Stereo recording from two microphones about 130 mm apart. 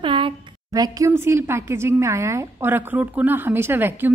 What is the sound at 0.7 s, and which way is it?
A woman's voice, 30° right (ahead or behind).